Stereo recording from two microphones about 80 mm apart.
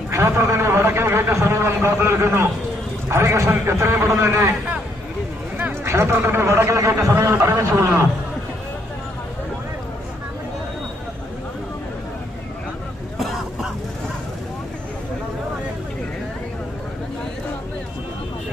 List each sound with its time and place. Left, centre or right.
0.1 s a man's voice: right
5.9 s a man's voice: right
13.2 s cough: centre